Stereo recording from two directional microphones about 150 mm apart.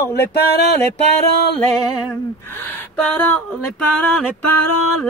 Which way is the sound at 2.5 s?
5° left (ahead or behind).